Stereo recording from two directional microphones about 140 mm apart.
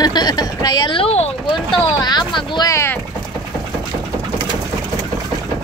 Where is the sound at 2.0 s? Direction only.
30° left (ahead or behind).